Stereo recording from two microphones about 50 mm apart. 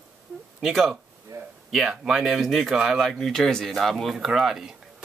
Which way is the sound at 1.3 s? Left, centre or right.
Right.